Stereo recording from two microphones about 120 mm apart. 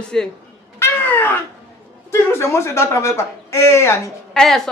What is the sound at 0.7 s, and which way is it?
Cat, 15° left (ahead or behind).